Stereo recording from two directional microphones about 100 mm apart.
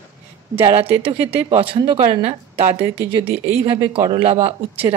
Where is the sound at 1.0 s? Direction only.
65° right (ahead or behind).